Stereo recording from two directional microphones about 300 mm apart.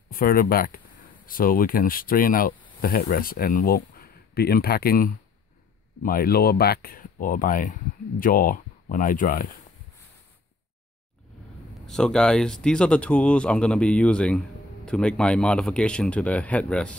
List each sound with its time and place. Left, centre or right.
0.1 s speech: left
11.8 s speech: centre